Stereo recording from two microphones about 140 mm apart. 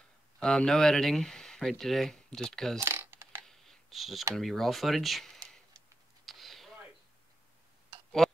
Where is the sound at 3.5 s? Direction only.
Centre (ahead or behind).